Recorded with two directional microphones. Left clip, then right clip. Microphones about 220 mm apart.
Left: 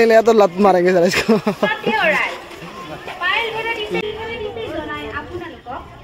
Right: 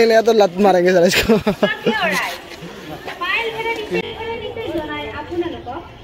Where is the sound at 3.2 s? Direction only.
45° left (ahead or behind).